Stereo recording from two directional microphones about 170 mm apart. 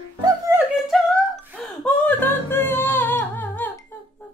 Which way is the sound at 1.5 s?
10° left (ahead or behind).